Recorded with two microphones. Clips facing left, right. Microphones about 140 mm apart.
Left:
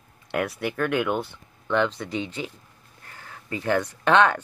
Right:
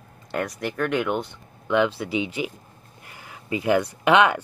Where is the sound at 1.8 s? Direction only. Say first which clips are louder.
Right 3 dB; 10° right (ahead or behind).